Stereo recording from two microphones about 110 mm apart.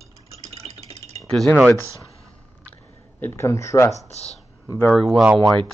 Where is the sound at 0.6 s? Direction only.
70° right (ahead or behind).